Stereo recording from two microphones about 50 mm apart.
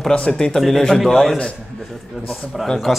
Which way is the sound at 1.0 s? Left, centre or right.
Centre.